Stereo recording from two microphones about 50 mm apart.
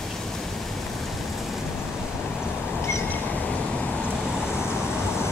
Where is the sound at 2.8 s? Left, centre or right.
Left.